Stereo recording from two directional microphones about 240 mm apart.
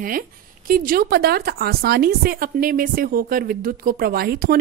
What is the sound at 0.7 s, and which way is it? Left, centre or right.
Speech, right.